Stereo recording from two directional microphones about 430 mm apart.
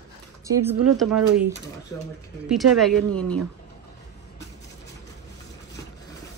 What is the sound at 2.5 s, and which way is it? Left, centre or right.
Speech, centre.